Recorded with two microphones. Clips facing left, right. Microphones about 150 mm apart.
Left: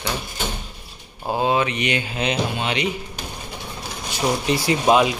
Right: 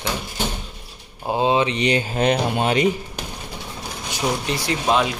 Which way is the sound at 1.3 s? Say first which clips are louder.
Right 1 dB; 20° right (ahead or behind).